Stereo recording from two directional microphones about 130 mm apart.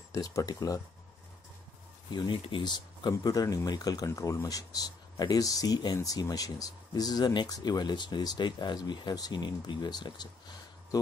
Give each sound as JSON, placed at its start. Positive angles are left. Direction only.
{"t": 0.1, "sound": "speech", "side_deg": 25}
{"t": 2.0, "sound": "speech", "side_deg": 35}